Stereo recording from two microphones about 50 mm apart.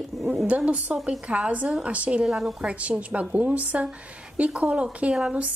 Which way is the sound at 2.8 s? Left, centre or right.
Right.